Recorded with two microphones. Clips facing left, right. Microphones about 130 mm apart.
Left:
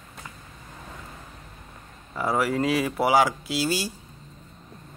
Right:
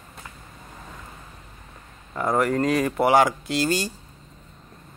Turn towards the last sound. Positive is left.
turn(degrees=5)  # may be behind; listen again after turning